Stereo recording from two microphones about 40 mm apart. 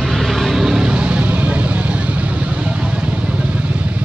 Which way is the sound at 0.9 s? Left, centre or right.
Right.